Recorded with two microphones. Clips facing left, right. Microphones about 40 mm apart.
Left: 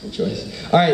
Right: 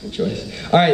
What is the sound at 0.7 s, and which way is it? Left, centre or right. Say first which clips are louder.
Speech: right 1 dB; right.